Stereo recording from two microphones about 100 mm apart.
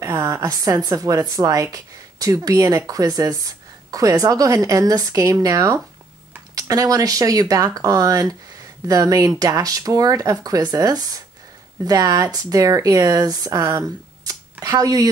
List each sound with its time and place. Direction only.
0.0 s speech: 30° right (ahead or behind)